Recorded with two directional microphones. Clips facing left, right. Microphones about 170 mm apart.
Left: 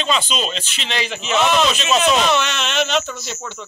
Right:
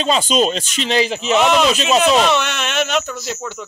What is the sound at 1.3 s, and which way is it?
Speech, 15° right (ahead or behind).